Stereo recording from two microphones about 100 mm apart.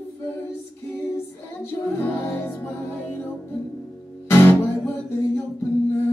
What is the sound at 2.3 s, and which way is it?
Music, 25° left (ahead or behind).